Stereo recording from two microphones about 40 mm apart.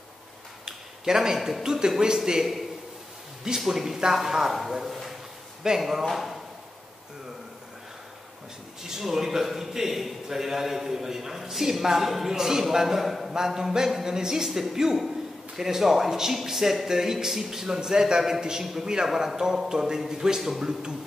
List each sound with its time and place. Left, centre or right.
0.7 s a sound: centre
1.6 s a man's voice: centre
3.4 s a man's voice: centre
8.8 s a man's voice: centre